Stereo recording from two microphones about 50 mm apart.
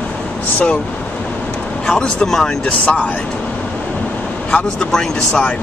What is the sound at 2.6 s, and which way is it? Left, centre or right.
Speech, left.